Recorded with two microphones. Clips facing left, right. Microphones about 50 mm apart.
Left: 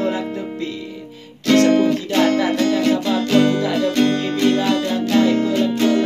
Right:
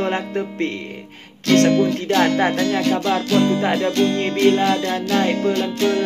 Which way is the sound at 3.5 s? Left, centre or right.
Right.